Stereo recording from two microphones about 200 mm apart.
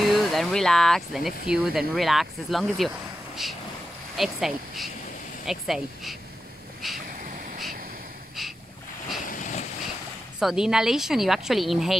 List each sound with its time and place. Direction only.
0.0 s speech: centre (ahead or behind)
4.2 s speech: centre (ahead or behind)
7.2 s a sound: 40° right (ahead or behind)
8.4 s boat: centre (ahead or behind)
9.2 s vehicle: 40° left (ahead or behind)
10.4 s speech: 5° right (ahead or behind)